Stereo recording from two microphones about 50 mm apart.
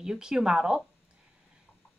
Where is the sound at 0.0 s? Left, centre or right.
Centre.